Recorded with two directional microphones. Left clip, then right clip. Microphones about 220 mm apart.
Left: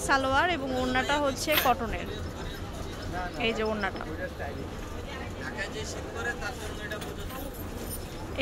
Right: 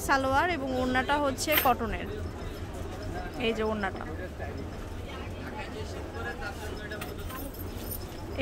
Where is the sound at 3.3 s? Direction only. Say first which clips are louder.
Even; 10° right (ahead or behind).